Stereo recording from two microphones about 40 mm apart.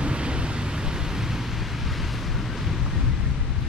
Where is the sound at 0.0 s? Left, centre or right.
Right.